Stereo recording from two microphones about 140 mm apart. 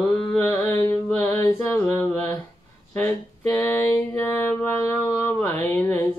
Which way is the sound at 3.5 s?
15° left (ahead or behind).